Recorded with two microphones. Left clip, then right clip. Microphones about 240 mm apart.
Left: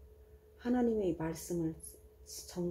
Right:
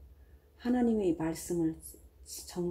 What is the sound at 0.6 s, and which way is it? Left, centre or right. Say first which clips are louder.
Speech: right 3 dB; right.